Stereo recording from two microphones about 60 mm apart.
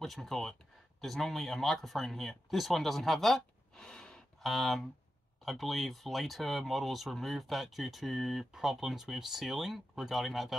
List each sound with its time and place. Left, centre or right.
0.0 s speech: centre
4.4 s speech: centre